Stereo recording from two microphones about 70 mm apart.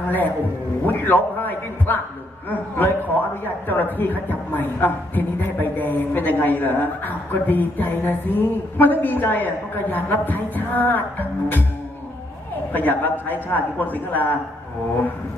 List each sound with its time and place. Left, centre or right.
0.8 s a man's voice: left
12.7 s a man's voice: left